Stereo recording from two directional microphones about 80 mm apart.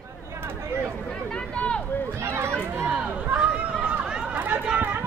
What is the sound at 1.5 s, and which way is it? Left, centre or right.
Speech, centre.